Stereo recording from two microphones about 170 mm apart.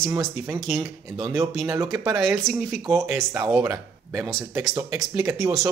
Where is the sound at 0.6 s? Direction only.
Centre (ahead or behind).